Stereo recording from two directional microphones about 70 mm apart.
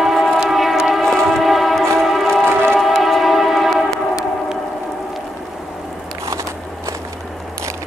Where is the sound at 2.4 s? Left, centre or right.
Right.